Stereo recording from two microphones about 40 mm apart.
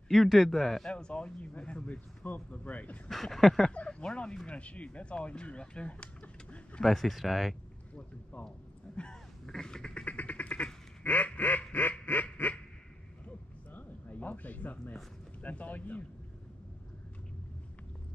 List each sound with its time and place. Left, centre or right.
0.1 s a man's voice: centre
0.9 s speech: left
3.1 s speech: centre
3.8 s speech: left
6.2 s a sound: left
6.8 s a man's voice: centre
7.9 s boat: left
8.9 s a sound: left
9.5 s duck: centre
10.0 s quack: left
13.7 s a sound: left
15.4 s speech: left